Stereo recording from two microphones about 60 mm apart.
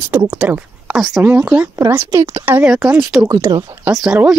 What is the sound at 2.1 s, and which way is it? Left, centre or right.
Speech, right.